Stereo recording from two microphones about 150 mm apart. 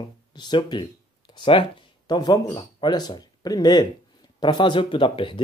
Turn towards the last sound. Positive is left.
turn(degrees=35)  # may be behind; listen again after turning